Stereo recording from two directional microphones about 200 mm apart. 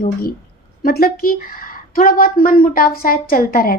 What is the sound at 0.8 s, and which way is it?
A woman's voice, 50° left (ahead or behind).